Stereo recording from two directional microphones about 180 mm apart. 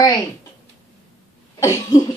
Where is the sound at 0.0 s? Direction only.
20° left (ahead or behind).